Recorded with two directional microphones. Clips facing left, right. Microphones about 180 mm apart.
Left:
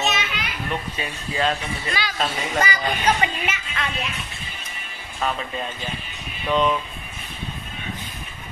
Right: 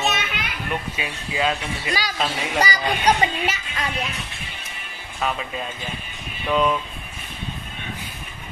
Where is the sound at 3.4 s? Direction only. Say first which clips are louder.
Right 2 dB; 35° right (ahead or behind).